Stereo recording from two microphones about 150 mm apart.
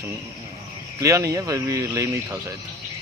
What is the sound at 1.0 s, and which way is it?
Speech, 20° right (ahead or behind).